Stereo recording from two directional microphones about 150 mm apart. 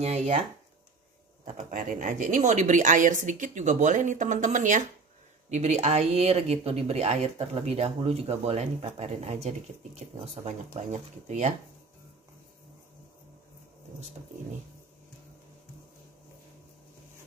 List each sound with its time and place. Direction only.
0.0 s speech: 50° right (ahead or behind)
1.6 s a woman's voice: 60° right (ahead or behind)